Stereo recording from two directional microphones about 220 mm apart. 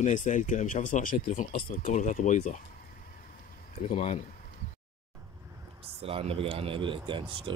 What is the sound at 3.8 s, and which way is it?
Speech, 30° left (ahead or behind).